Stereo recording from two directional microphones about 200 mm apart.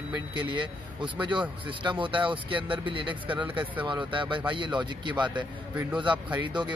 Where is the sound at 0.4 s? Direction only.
25° right (ahead or behind).